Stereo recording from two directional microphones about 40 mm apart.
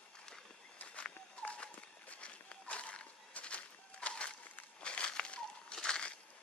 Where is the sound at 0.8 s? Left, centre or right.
Left.